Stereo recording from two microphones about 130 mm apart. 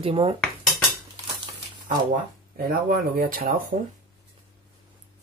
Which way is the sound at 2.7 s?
90° right.